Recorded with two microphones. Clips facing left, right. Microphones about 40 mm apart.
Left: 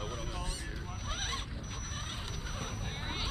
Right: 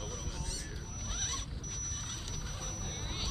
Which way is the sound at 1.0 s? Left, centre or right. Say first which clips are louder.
Left 3 dB; left.